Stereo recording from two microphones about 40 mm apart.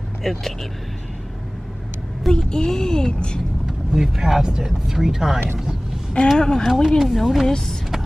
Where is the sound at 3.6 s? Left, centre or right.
Centre.